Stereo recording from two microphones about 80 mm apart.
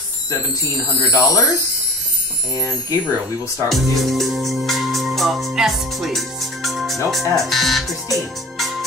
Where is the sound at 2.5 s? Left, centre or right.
Left.